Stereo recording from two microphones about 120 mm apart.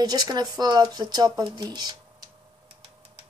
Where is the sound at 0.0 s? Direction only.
35° right (ahead or behind).